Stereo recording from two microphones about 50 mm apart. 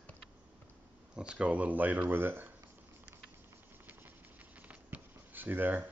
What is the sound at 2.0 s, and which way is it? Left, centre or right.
Speech, right.